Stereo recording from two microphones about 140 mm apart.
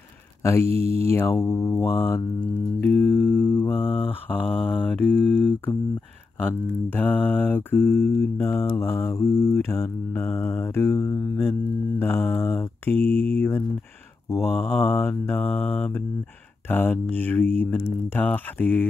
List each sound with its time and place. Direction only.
0.4 s mantra: 20° left (ahead or behind)
0.7 s speech: 45° right (ahead or behind)
1.0 s speech: 15° left (ahead or behind)
2.8 s mantra: 15° left (ahead or behind)
6.9 s mantra: 10° left (ahead or behind)
12.0 s speech: 15° left (ahead or behind)
12.9 s speech: 50° right (ahead or behind)
13.4 s speech: 15° left (ahead or behind)